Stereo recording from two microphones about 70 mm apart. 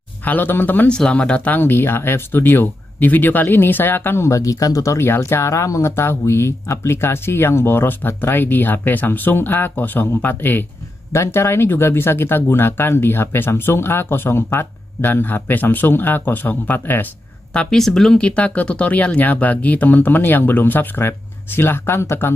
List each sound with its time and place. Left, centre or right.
0.2 s speech: left
0.8 s speech: centre; by 4.3 s left
4.3 s speech: left
5.0 s speech: left
17.6 s speech: centre
18.2 s speech: centre; by 22.3 s left